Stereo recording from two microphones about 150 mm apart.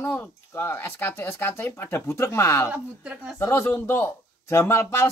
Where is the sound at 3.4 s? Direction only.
15° left (ahead or behind).